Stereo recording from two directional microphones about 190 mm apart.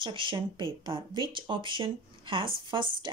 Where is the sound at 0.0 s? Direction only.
25° right (ahead or behind).